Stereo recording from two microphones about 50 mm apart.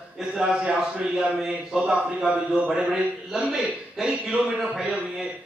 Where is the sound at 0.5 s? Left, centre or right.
Right.